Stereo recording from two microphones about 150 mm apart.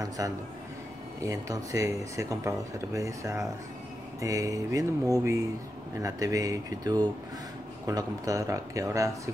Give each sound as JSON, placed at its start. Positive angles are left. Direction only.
{"t": 0.2, "sound": "speech", "side_deg": -25}